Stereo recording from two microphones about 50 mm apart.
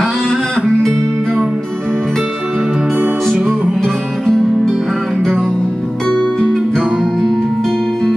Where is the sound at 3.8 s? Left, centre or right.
Centre.